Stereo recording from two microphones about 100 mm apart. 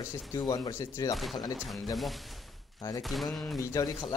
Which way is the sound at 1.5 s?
Centre (ahead or behind).